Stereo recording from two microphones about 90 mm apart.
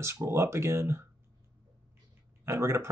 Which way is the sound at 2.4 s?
30° right (ahead or behind).